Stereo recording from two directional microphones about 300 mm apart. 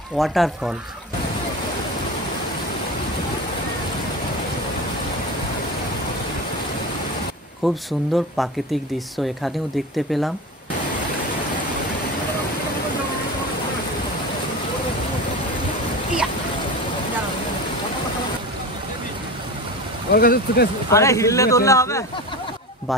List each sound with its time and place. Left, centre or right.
0.2 s speech: centre
7.6 s speech: centre
20.1 s speech: left
20.9 s a man's voice: centre